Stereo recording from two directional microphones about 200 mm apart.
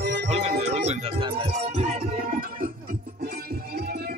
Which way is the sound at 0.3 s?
30° right (ahead or behind).